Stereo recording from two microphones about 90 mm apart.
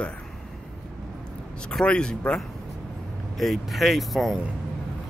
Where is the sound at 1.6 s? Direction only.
10° left (ahead or behind).